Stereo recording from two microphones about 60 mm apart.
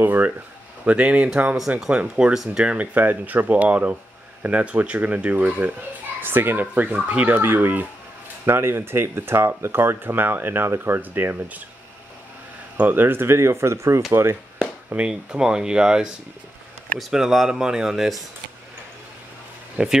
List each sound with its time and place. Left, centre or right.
0.0 s speech: right
2.9 s speech: right
6.2 s speech: right
11.0 s speech: right
12.7 s speech: right
15.0 s speech: centre
19.8 s speech: centre